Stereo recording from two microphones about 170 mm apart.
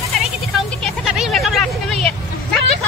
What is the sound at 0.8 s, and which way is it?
Vehicle, centre (ahead or behind).